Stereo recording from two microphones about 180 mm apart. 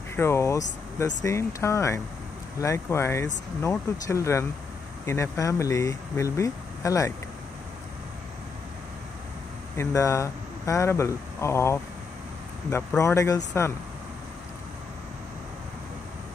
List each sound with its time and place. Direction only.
0.1 s speech: 15° left (ahead or behind)
9.8 s speech: 15° left (ahead or behind)